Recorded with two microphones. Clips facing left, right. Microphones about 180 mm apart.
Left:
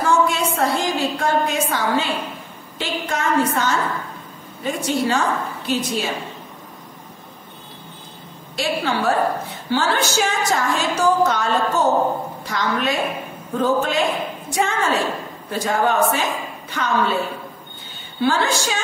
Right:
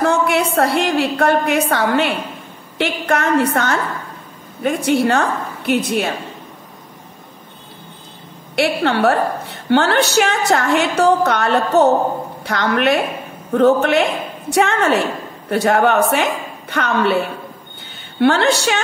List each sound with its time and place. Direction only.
0.0 s a woman's voice: 65° right (ahead or behind)
8.5 s a woman's voice: 65° right (ahead or behind)
18.2 s a woman's voice: 70° right (ahead or behind)